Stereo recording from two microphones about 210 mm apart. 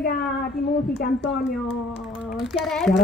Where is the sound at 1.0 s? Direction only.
55° left (ahead or behind).